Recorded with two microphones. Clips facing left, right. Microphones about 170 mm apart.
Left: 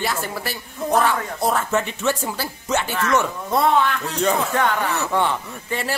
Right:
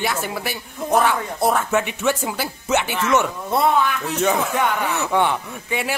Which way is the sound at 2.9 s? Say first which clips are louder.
Right 1 dB; 20° right (ahead or behind).